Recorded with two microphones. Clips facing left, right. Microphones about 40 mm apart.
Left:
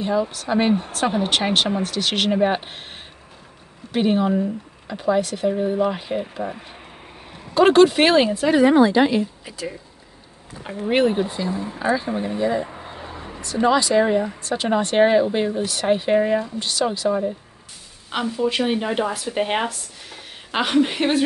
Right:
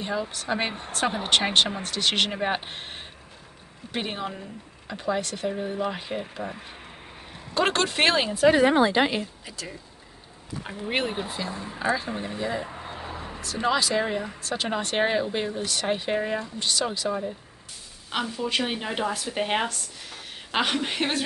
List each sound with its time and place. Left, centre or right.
0.0 s speech: centre
8.7 s speech: right
9.5 s speech: centre